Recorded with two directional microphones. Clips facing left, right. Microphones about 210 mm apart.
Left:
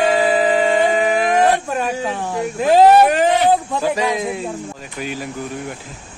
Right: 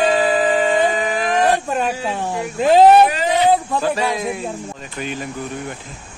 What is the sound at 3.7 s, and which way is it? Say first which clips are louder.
Speech: left 1 dB; 15° left (ahead or behind).